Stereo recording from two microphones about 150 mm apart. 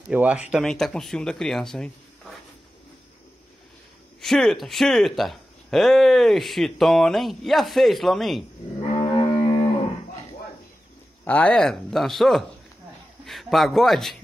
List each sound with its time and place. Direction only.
0.1 s speech: 10° right (ahead or behind)
4.2 s speech: 5° left (ahead or behind)
8.9 s cattle: 35° left (ahead or behind)
11.2 s speech: 10° left (ahead or behind)